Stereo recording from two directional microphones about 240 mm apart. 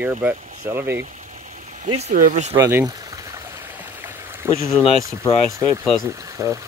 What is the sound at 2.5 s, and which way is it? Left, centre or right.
Speech, centre.